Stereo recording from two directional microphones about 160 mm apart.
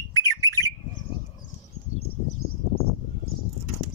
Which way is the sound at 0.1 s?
20° left (ahead or behind).